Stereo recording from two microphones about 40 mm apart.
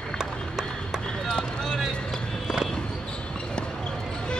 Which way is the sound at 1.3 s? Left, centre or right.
Left.